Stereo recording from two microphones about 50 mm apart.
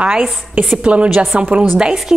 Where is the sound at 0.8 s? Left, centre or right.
Right.